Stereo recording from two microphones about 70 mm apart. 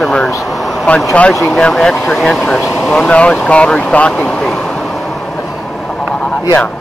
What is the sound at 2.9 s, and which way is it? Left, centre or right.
Speech, centre.